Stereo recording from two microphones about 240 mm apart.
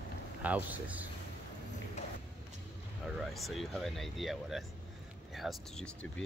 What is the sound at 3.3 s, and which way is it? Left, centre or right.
Speech, centre.